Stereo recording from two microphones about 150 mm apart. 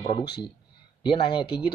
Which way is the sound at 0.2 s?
90° left.